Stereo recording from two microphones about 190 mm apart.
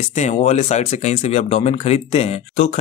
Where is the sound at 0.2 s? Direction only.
35° left (ahead or behind).